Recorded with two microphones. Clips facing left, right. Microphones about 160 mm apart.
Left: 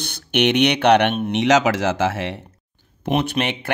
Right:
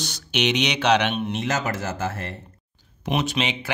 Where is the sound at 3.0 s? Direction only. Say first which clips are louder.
Left 4 dB; 55° left (ahead or behind).